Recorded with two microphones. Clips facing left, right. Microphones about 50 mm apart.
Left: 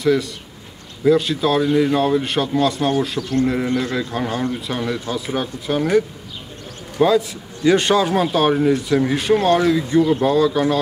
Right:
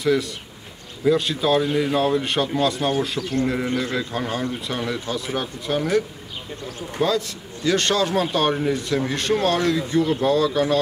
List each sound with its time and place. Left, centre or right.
0.0 s speech: centre